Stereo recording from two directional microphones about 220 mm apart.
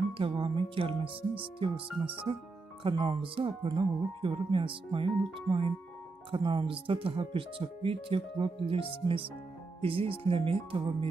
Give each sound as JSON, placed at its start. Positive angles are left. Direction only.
{"t": 0.2, "sound": "speech", "side_deg": -25}
{"t": 2.3, "sound": "speech", "side_deg": -25}